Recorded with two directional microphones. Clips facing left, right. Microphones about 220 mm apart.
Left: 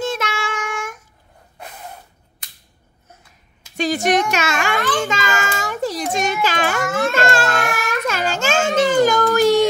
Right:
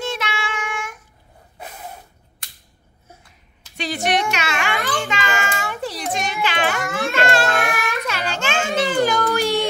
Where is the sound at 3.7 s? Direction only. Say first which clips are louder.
Left 4 dB; 45° left (ahead or behind).